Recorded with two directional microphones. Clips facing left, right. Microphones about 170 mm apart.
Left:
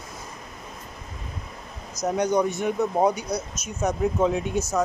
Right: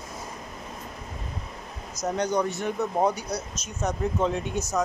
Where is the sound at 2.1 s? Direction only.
10° left (ahead or behind).